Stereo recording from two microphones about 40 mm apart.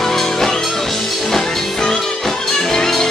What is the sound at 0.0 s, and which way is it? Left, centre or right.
Music, centre.